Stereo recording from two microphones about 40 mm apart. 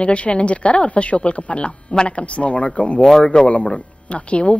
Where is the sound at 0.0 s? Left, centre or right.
Left.